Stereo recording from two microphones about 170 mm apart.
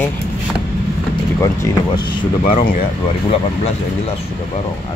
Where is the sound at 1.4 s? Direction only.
15° left (ahead or behind).